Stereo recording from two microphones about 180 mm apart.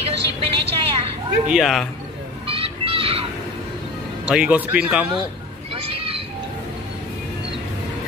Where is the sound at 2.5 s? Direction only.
30° right (ahead or behind).